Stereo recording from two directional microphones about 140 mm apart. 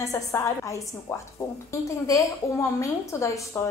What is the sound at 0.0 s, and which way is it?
A woman's voice, 20° left (ahead or behind).